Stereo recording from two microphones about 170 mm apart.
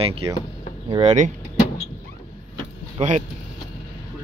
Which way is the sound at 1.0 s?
45° right (ahead or behind).